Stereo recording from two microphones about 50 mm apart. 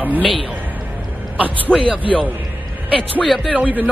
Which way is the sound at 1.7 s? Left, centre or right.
Centre.